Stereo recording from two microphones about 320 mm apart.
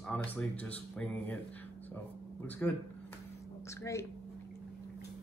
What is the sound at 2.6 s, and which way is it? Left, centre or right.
A woman's voice, centre.